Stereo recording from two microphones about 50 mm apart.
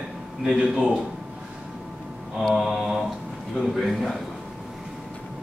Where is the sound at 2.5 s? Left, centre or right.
Centre.